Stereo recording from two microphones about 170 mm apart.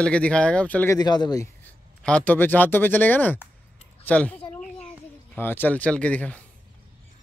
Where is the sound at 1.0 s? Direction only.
25° left (ahead or behind).